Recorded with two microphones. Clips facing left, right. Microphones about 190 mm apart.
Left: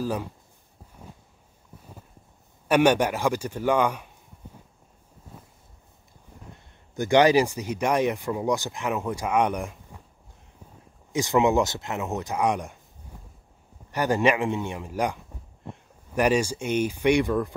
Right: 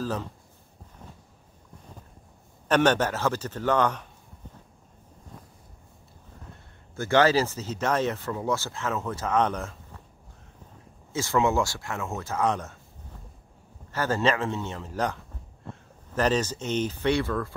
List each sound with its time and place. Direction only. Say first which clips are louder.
0.0 s speech: left 2 dB; 10° left (ahead or behind)
2.7 s speech: left 2 dB; 10° left (ahead or behind)
5.3 s a sound: even; 5° left (ahead or behind)
7.0 s speech: left 3 dB; 15° left (ahead or behind)
11.1 s speech: left 3 dB; 15° left (ahead or behind)
13.0 s a sound: left 1 dB; 10° left (ahead or behind)
13.9 s speech: left 3 dB; 15° left (ahead or behind)